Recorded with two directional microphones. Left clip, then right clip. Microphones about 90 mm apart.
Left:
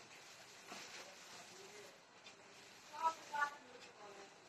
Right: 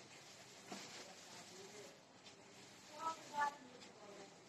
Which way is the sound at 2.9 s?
35° right (ahead or behind).